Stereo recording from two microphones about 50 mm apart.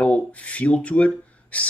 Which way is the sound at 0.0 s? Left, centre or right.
Left.